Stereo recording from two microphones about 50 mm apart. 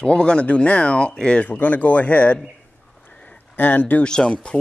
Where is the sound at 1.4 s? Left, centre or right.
Left.